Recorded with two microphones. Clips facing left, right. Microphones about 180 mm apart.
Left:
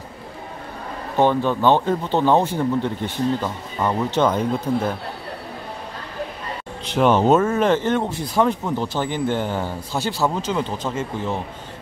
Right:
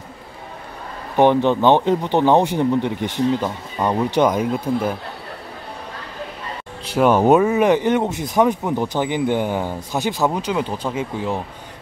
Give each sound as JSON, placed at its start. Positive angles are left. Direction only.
{"t": 1.1, "sound": "speech", "side_deg": -20}
{"t": 6.9, "sound": "speech", "side_deg": -10}